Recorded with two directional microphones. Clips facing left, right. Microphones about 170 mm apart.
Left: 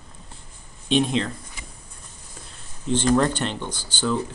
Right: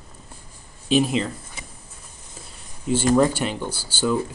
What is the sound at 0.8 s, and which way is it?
Speech, 5° right (ahead or behind).